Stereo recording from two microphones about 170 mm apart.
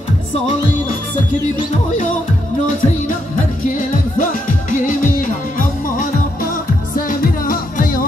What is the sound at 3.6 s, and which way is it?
Music, 45° left (ahead or behind).